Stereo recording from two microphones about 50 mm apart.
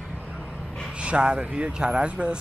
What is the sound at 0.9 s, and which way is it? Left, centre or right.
Speech, right.